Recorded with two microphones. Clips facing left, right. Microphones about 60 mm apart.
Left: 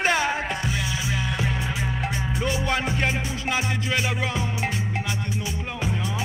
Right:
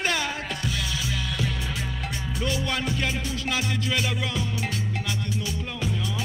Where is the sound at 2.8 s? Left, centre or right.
Left.